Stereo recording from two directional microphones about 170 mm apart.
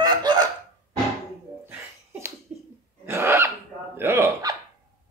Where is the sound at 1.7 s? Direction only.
15° right (ahead or behind).